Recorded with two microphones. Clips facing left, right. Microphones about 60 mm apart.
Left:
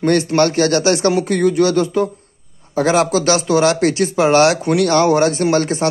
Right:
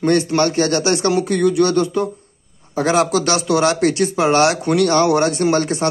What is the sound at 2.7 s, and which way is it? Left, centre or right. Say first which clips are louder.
Speech: left 1 dB; left.